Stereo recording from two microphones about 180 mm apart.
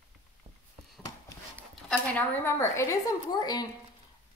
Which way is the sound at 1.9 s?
10° left (ahead or behind).